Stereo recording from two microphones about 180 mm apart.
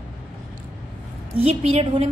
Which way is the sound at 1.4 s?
35° right (ahead or behind).